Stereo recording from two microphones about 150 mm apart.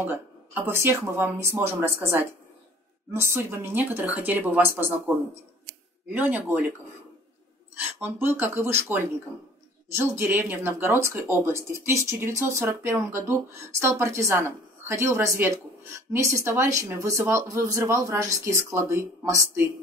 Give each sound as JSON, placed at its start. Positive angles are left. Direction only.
{"t": 0.7, "sound": "speech", "side_deg": -15}
{"t": 7.8, "sound": "speech", "side_deg": -15}